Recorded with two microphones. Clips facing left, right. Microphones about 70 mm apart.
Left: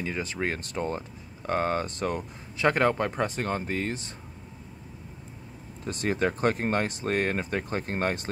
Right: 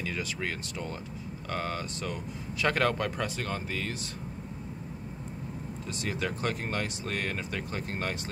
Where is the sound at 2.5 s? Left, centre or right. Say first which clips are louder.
Left 4 dB; left.